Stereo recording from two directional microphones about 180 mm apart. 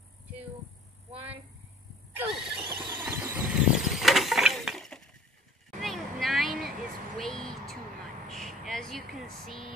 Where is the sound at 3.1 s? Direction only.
10° right (ahead or behind).